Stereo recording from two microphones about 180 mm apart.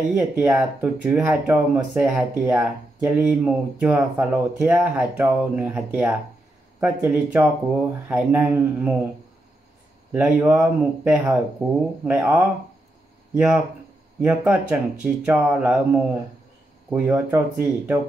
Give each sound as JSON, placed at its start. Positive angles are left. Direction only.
{"t": 0.2, "sound": "speech", "side_deg": -5}
{"t": 10.1, "sound": "speech", "side_deg": -5}
{"t": 14.2, "sound": "speech", "side_deg": -10}